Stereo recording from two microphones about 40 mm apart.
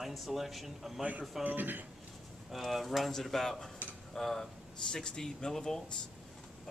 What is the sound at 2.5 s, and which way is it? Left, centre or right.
Speech, centre.